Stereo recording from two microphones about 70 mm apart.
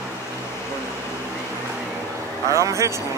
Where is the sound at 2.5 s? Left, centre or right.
Right.